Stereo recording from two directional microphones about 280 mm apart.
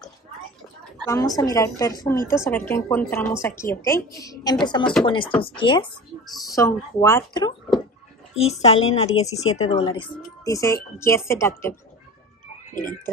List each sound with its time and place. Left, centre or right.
1.0 s speech: centre
8.4 s speech: left